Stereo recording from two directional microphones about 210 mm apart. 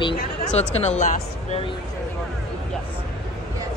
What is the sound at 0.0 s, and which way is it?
Speech, 30° left (ahead or behind).